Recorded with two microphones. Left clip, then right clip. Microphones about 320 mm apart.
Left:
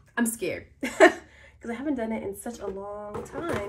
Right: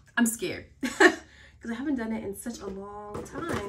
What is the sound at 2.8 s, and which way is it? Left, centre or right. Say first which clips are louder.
Speech: left 4 dB; left.